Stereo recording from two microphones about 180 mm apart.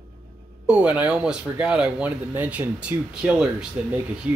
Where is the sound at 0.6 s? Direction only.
5° right (ahead or behind).